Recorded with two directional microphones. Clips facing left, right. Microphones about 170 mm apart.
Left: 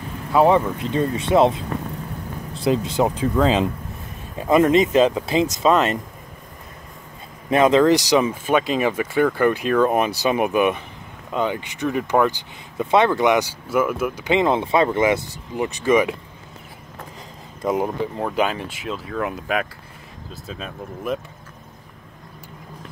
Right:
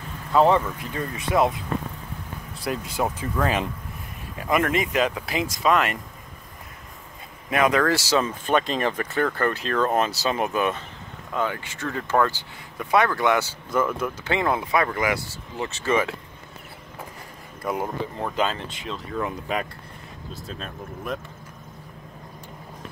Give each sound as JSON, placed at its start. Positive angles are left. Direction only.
{"t": 0.3, "sound": "speech", "side_deg": 15}
{"t": 7.4, "sound": "speech", "side_deg": 25}
{"t": 17.6, "sound": "speech", "side_deg": 20}
{"t": 20.4, "sound": "speech", "side_deg": 5}